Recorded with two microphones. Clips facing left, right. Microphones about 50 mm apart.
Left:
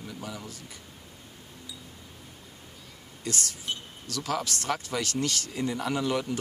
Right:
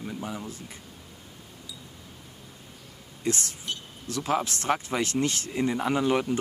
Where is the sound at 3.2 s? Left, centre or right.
Right.